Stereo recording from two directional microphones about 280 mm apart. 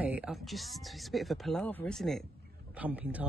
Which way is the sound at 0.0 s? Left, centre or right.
Centre.